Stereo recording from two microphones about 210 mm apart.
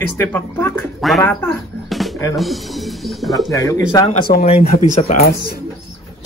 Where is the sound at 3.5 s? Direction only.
15° left (ahead or behind).